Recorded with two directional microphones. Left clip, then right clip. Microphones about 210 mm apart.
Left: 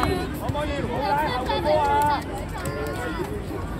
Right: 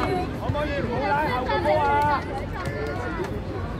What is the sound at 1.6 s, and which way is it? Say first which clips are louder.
Vehicle: left 1 dB; 45° right (ahead or behind).